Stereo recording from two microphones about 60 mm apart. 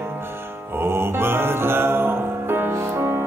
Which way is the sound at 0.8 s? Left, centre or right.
Right.